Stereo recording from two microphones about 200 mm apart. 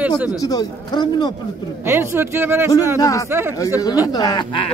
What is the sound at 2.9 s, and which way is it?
Speech, 15° left (ahead or behind).